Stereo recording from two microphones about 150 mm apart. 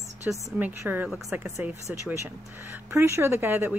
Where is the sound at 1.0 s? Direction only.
Centre (ahead or behind).